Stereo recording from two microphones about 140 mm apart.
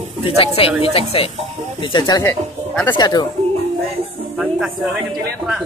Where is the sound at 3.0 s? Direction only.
30° left (ahead or behind).